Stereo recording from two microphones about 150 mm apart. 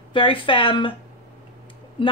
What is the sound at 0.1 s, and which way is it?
Speech, 35° left (ahead or behind).